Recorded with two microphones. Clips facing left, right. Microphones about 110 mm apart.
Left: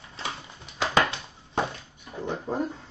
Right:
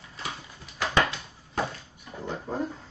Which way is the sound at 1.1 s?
25° left (ahead or behind).